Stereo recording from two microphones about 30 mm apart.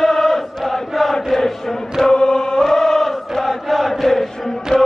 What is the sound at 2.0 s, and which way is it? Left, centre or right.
Chant, left.